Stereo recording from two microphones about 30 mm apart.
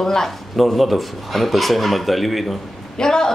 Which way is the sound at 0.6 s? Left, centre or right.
Centre.